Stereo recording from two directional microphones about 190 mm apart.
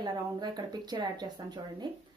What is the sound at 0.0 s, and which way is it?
A woman's voice, 20° right (ahead or behind).